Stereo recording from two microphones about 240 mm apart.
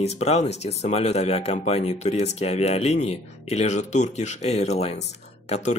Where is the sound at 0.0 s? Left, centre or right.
Left.